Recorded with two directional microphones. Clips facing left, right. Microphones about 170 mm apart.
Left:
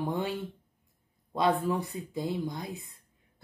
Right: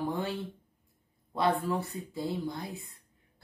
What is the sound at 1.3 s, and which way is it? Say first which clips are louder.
Speech: left 2 dB; 20° left (ahead or behind).